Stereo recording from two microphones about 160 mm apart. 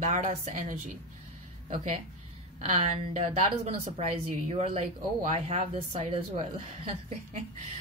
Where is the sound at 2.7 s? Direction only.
45° right (ahead or behind).